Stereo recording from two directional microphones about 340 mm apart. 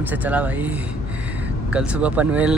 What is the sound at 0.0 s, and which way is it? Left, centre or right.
Speech, centre.